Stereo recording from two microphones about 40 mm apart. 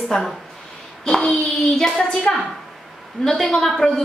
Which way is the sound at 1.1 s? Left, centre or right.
Centre.